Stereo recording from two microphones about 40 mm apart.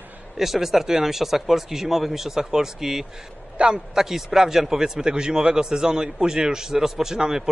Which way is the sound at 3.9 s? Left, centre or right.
Centre.